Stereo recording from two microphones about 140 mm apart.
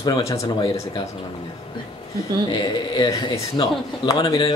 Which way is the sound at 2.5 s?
30° left (ahead or behind).